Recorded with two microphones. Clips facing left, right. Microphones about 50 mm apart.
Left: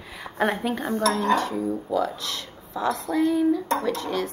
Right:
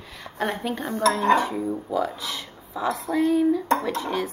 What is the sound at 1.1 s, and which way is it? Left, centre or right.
A woman's voice, centre.